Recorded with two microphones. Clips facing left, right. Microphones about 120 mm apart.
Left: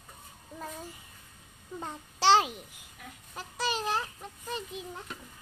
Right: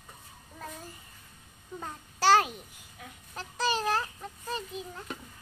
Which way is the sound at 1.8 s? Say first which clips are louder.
Even; 20° left (ahead or behind).